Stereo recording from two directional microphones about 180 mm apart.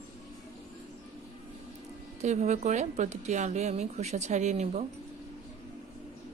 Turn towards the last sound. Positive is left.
turn(degrees=-40)  # may be behind; listen again after turning